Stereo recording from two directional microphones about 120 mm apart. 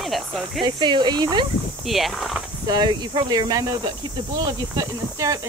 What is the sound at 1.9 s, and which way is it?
Speech, centre (ahead or behind).